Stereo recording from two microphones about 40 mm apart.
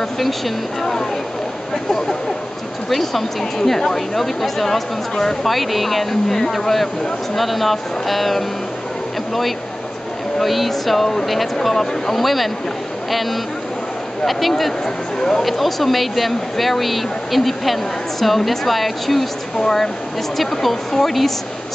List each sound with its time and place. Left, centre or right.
2.9 s a woman's voice: centre
10.4 s a woman's voice: centre
15.4 s a woman's voice: centre